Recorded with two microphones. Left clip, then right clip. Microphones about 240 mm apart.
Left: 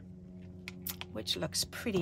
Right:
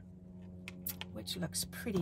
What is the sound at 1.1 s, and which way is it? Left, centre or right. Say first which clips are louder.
Speech: left 7 dB; left.